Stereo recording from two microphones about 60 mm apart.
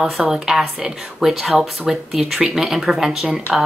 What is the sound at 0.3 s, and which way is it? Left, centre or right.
Speech, centre.